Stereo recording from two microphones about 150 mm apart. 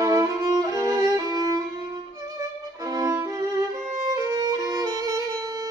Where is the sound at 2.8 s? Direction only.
25° right (ahead or behind).